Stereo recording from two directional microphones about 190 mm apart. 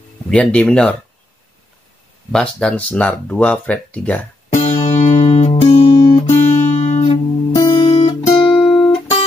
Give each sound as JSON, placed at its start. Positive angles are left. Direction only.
{"t": 0.3, "sound": "speech", "side_deg": 5}
{"t": 2.3, "sound": "speech", "side_deg": 5}
{"t": 4.6, "sound": "music", "side_deg": 40}
{"t": 6.2, "sound": "music", "side_deg": 40}
{"t": 7.5, "sound": "music", "side_deg": 15}
{"t": 7.8, "sound": "guitar", "side_deg": 30}
{"t": 8.4, "sound": "guitar", "side_deg": 0}